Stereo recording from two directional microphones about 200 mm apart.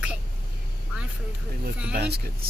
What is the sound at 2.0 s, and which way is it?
Speech, 50° right (ahead or behind).